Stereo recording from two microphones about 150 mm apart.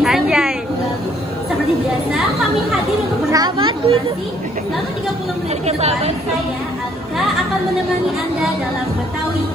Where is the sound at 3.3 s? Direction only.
25° right (ahead or behind).